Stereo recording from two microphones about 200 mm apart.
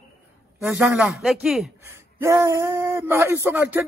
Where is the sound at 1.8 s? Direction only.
10° right (ahead or behind).